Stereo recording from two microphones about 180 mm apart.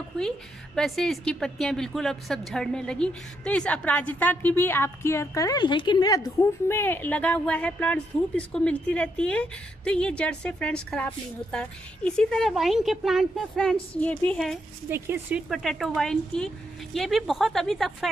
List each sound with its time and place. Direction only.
0.7 s a woman's voice: centre (ahead or behind)
14.9 s a woman's voice: 10° right (ahead or behind)